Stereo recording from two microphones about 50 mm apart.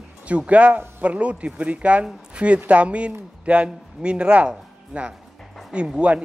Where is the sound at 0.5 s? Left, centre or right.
Right.